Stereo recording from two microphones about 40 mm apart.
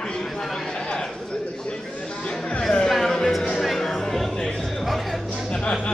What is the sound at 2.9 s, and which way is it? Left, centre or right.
Music, centre.